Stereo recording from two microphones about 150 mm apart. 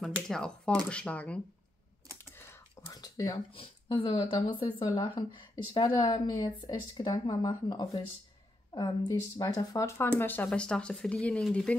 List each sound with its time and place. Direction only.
0.0 s speech: 5° left (ahead or behind)
2.3 s whispering: 20° left (ahead or behind)
3.5 s speech: 35° left (ahead or behind); by 11.7 s 5° left (ahead or behind)